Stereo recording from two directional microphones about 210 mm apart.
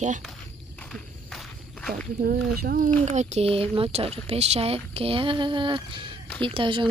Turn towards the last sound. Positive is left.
turn(degrees=-25)  # may be behind; listen again after turning